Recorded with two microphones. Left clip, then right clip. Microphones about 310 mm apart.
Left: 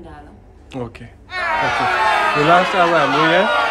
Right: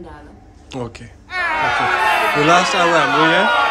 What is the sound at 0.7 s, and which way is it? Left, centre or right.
Speech, centre.